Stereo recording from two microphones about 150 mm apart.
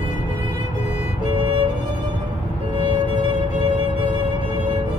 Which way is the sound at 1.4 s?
35° right (ahead or behind).